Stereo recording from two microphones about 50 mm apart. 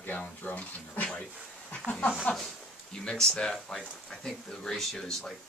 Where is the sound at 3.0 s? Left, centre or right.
Centre.